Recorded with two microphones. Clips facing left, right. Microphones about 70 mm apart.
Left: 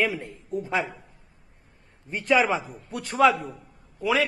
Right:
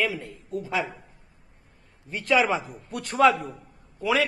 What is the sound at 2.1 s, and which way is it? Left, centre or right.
Speech, centre.